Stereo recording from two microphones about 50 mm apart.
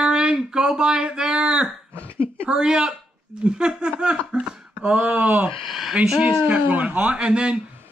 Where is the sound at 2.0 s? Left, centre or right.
Right.